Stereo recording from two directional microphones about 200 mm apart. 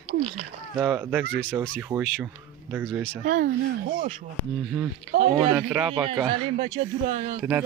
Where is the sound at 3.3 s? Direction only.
40° right (ahead or behind).